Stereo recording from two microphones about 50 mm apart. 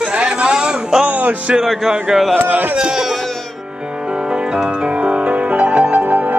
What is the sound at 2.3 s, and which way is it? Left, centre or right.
Speech, right.